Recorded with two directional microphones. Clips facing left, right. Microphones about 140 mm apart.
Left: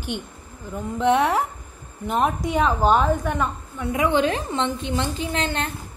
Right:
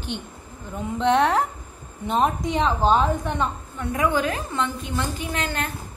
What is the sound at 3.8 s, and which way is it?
A woman's voice, 20° left (ahead or behind).